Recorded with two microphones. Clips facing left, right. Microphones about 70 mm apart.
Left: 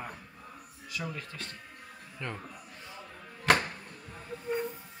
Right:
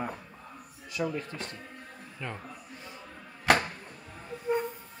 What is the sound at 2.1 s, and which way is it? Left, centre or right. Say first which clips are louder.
Speech: even; centre.